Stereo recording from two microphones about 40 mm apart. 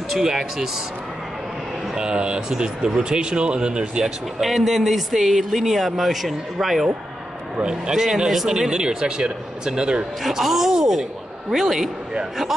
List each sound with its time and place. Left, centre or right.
0.1 s speech: centre
2.0 s speech: right
4.4 s speech: centre
7.6 s speech: centre
10.2 s speech: centre